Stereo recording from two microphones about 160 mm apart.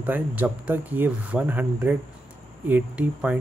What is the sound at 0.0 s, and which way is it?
A man's voice, 10° right (ahead or behind).